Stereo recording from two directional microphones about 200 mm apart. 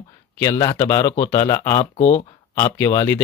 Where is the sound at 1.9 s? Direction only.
35° left (ahead or behind).